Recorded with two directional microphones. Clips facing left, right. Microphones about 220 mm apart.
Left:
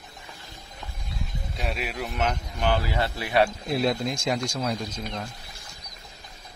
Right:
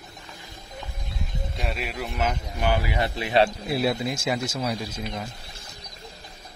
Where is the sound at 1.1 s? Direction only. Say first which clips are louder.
Even; centre (ahead or behind); by 3.5 s 20° right (ahead or behind).